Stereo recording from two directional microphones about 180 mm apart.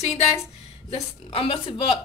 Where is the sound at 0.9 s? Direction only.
30° left (ahead or behind).